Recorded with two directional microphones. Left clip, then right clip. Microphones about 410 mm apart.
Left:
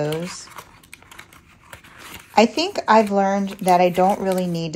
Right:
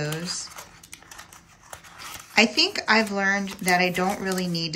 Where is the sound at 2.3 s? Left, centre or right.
Centre.